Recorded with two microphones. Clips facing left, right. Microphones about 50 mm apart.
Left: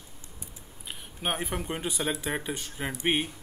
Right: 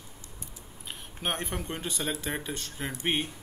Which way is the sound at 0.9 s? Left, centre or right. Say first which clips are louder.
Left 1 dB; centre.